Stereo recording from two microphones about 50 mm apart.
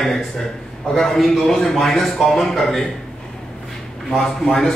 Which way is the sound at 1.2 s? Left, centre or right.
Centre.